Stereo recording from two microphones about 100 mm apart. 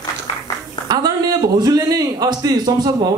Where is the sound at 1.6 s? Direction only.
40° right (ahead or behind).